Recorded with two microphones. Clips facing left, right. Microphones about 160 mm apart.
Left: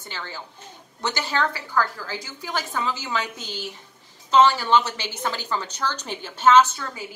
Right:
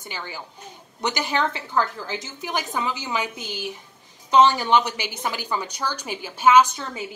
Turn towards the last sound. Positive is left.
turn(degrees=-20)  # may be behind; listen again after turning